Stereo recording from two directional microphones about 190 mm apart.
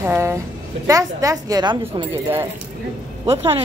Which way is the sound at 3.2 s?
30° right (ahead or behind).